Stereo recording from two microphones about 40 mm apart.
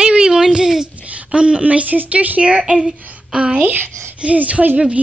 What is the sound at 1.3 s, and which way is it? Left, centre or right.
A woman's voice, right.